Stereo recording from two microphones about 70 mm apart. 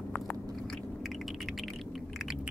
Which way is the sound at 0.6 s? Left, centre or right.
Centre.